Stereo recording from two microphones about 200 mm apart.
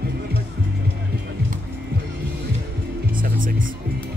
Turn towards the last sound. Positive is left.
turn(degrees=-45)  # may be behind; listen again after turning